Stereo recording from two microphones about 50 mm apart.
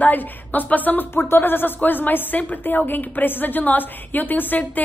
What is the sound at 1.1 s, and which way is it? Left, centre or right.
A woman's voice, left.